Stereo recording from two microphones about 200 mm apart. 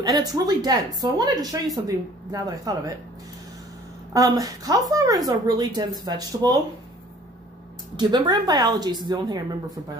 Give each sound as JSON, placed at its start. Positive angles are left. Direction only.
{"t": 0.0, "sound": "a woman's voice", "side_deg": -20}
{"t": 4.1, "sound": "speech", "side_deg": -20}
{"t": 7.9, "sound": "a woman's voice", "side_deg": -20}